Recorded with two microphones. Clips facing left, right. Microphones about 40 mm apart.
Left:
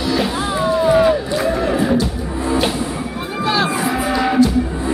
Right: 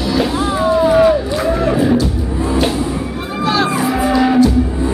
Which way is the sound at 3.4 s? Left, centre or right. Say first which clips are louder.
Right 2 dB; centre.